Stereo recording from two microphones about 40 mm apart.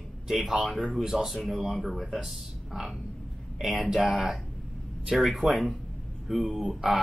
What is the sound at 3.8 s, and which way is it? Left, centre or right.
Speech, centre.